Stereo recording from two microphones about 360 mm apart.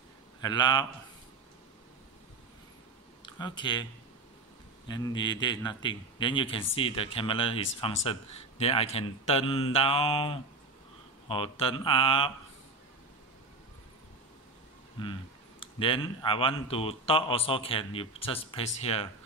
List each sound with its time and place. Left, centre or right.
0.4 s speech: centre
3.3 s speech: centre
4.8 s speech: centre
15.0 s speech: centre